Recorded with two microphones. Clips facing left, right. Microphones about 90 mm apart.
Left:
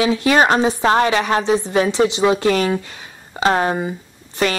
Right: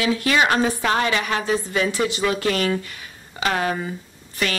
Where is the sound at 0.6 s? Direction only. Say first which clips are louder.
Left 5 dB; 20° left (ahead or behind).